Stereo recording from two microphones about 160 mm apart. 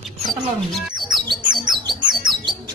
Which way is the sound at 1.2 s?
25° right (ahead or behind).